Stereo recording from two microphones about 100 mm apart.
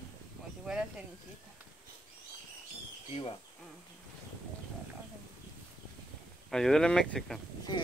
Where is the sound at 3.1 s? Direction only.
70° left (ahead or behind).